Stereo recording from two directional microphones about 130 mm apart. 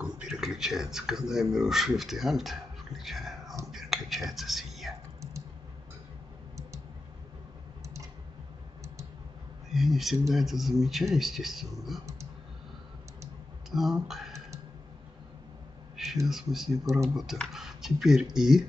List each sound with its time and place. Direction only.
0.0 s speech: 5° right (ahead or behind)
3.7 s whispering: centre (ahead or behind)
4.3 s speech: centre (ahead or behind)
7.8 s a sound: 25° right (ahead or behind)
9.7 s speech: centre (ahead or behind)
13.7 s speech: centre (ahead or behind)
16.3 s speech: centre (ahead or behind)